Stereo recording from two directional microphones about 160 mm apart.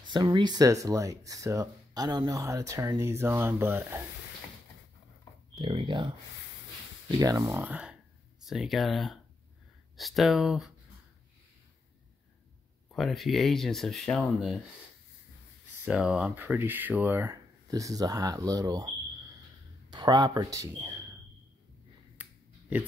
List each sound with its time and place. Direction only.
0.0 s speech: 30° right (ahead or behind); by 4.0 s 15° right (ahead or behind)
5.6 s speech: 35° right (ahead or behind); by 10.7 s 5° right (ahead or behind)
12.9 s speech: centre (ahead or behind)
15.8 s speech: 5° right (ahead or behind); by 18.9 s 25° right (ahead or behind)
19.9 s speech: 25° right (ahead or behind)
22.1 s finger snapping: 10° right (ahead or behind)